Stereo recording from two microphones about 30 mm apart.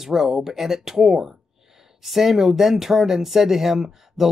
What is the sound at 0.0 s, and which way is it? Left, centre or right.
Speech, centre.